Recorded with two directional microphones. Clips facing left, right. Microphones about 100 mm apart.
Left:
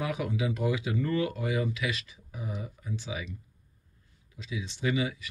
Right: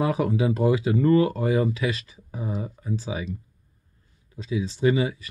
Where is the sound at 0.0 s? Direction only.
35° right (ahead or behind).